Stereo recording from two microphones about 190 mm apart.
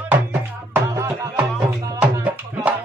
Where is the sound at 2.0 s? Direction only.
10° right (ahead or behind).